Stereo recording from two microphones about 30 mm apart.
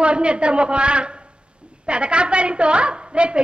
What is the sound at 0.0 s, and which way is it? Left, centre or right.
A woman's voice, right.